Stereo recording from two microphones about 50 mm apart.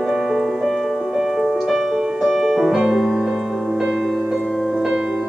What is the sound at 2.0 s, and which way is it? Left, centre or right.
Music, centre.